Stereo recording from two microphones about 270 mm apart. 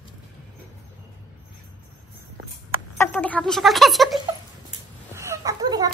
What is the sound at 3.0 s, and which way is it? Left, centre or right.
Speech, centre.